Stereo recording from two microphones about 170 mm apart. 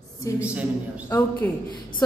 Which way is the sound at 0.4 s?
10° right (ahead or behind).